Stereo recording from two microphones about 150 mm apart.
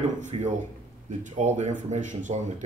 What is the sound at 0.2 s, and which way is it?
Speech, 50° right (ahead or behind).